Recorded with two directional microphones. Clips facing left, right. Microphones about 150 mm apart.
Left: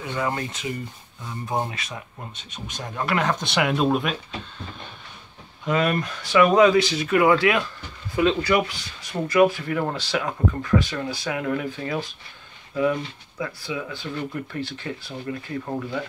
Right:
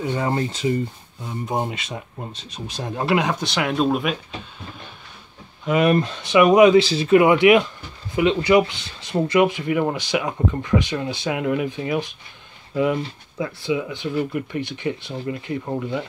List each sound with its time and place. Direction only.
0.0 s speech: 30° right (ahead or behind)
1.2 s speech: 20° right (ahead or behind)
3.2 s speech: 10° right (ahead or behind)
3.4 s speech: centre (ahead or behind)
5.7 s speech: 15° right (ahead or behind)
5.9 s speech: 25° right (ahead or behind)
6.8 s speech: 30° right (ahead or behind)